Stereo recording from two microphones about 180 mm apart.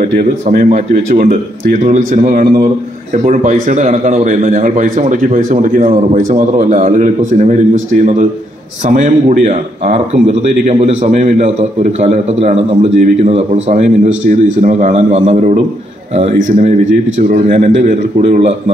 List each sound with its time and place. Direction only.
0.0 s a man's voice: 50° right (ahead or behind)
3.6 s a man's voice: 45° right (ahead or behind)